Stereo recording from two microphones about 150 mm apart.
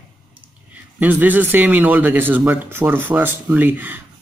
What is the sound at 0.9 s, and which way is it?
Speech, 10° right (ahead or behind).